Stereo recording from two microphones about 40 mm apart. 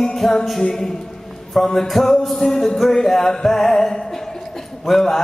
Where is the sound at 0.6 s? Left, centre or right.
Centre.